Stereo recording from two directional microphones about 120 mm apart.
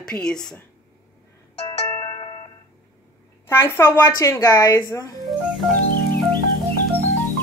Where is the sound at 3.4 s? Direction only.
20° left (ahead or behind).